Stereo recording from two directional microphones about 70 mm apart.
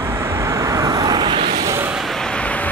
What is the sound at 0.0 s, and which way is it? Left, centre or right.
Vehicle, right.